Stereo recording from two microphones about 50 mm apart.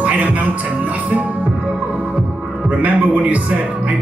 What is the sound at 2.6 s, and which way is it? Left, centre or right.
A man's voice, right.